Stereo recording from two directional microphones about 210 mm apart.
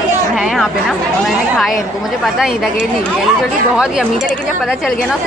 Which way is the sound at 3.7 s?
5° right (ahead or behind).